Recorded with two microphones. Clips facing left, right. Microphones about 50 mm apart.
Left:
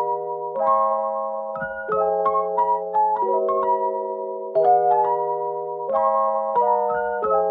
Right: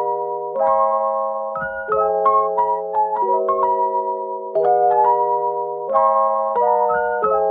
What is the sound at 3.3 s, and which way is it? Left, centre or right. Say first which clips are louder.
Keyboard: right 3 dB; right.